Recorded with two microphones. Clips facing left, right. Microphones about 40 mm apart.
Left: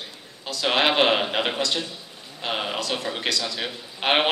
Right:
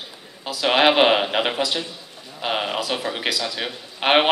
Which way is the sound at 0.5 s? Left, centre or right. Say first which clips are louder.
Right 4 dB; centre.